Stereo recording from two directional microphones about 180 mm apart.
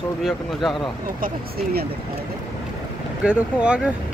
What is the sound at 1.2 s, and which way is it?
Speech, 60° right (ahead or behind).